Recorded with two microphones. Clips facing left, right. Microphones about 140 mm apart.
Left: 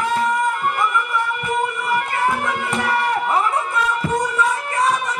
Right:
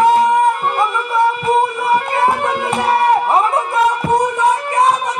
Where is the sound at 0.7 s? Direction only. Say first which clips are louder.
Right 4 dB; 30° right (ahead or behind).